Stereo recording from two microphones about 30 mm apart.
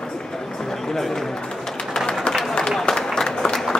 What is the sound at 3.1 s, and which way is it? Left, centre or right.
Applause, left.